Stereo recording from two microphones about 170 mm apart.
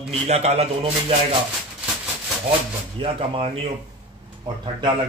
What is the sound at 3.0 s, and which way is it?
Speech, 30° right (ahead or behind).